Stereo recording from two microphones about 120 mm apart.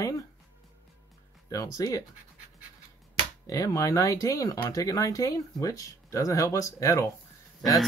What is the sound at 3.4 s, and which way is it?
Speech, 30° left (ahead or behind).